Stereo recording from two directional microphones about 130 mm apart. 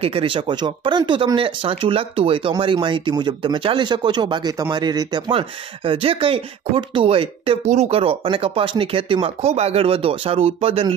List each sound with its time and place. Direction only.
0.0 s speech: 45° right (ahead or behind)
7.6 s speech: 65° right (ahead or behind)
7.9 s speech: 45° right (ahead or behind)